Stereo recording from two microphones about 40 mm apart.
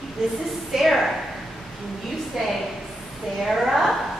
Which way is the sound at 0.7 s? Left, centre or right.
Centre.